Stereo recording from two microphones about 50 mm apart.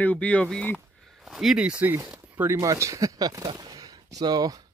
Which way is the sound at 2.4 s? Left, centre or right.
Right.